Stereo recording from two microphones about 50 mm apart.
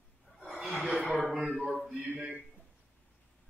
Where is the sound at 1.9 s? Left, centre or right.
Right.